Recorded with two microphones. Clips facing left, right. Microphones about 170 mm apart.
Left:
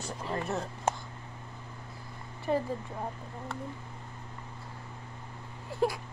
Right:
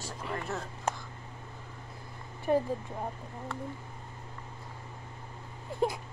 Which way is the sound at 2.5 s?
10° right (ahead or behind).